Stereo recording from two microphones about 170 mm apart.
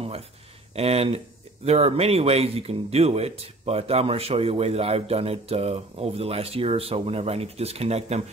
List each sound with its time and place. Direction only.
0.7 s speech: 35° right (ahead or behind)